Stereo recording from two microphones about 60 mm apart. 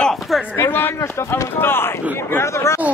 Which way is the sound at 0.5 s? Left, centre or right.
Left.